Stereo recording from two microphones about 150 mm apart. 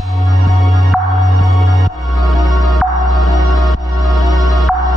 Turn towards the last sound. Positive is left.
turn(degrees=0)  # may be behind; listen again after turning